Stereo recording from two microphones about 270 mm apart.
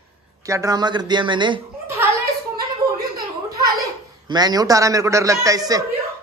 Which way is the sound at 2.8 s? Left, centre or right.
Centre.